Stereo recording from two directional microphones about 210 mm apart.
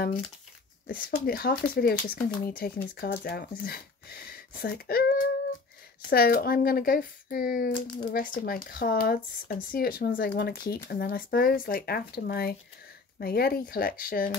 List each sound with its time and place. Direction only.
0.8 s speech: 45° left (ahead or behind)